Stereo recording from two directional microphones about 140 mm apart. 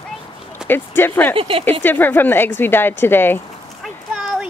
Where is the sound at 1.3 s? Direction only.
40° right (ahead or behind).